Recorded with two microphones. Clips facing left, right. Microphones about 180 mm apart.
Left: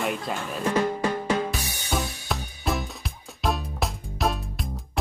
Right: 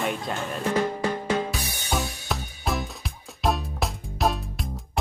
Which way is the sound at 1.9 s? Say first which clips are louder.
Even; centre (ahead or behind).